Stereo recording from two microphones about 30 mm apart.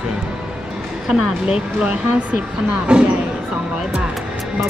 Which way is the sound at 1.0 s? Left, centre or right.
Centre.